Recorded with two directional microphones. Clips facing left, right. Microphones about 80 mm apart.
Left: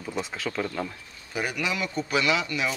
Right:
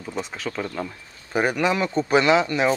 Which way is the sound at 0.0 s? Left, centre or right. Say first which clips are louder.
Right 1 dB; centre.